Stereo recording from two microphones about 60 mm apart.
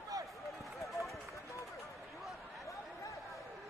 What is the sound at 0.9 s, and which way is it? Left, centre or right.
Run, centre.